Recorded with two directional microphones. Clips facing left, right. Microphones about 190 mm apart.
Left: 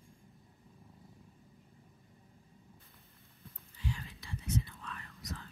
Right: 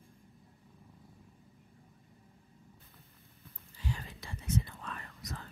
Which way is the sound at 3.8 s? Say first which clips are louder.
Right 1 dB; 45° right (ahead or behind).